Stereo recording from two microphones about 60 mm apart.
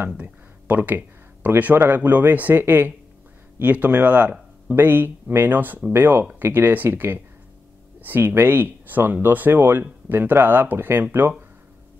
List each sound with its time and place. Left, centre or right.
0.2 s speech: right
3.6 s speech: right